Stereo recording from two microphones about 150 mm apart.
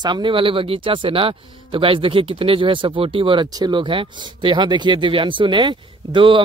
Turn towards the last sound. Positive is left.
turn(degrees=-35)  # may be behind; listen again after turning